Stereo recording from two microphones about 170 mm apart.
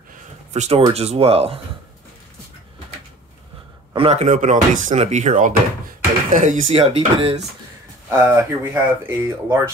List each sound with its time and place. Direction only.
0.5 s speech: 40° right (ahead or behind)
3.9 s speech: 35° right (ahead or behind)
8.1 s speech: 10° right (ahead or behind)